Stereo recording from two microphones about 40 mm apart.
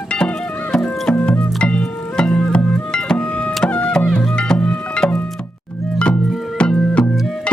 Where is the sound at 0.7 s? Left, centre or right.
Left.